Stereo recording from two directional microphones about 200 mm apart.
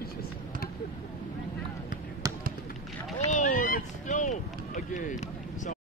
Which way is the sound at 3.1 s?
40° left (ahead or behind).